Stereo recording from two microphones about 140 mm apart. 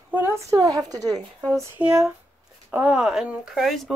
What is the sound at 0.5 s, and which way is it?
Speech, 25° right (ahead or behind).